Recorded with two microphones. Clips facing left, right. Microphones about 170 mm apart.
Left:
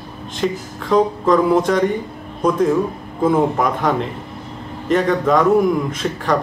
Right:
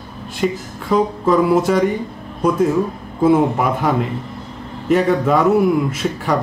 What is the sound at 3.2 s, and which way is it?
A man's voice, 10° right (ahead or behind).